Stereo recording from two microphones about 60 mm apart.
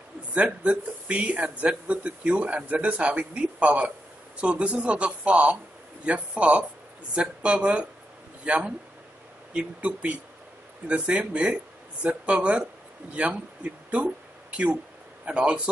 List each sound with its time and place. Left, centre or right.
0.3 s speech: right
9.8 s speech: right
15.2 s speech: centre